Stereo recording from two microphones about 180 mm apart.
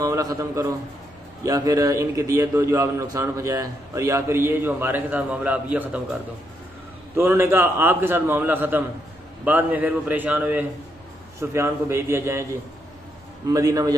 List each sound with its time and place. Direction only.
0.0 s a man's voice: 20° right (ahead or behind)
7.2 s a man's voice: 15° right (ahead or behind)
13.5 s a man's voice: 20° right (ahead or behind)